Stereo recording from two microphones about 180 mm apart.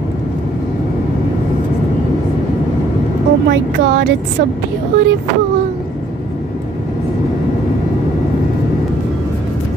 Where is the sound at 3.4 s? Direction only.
65° right (ahead or behind).